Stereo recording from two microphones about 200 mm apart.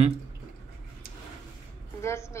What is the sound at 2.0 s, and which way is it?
Speech, 15° left (ahead or behind).